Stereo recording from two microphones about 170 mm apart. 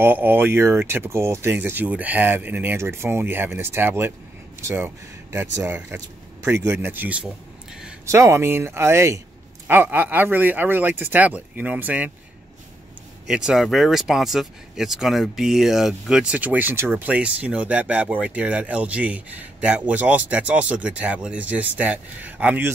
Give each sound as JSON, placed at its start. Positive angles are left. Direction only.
{"t": 0.0, "sound": "speech", "side_deg": -10}
{"t": 13.3, "sound": "speech", "side_deg": -5}